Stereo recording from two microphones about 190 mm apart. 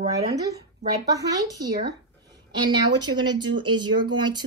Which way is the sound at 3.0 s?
25° right (ahead or behind).